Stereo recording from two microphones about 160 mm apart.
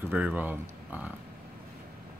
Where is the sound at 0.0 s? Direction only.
10° right (ahead or behind).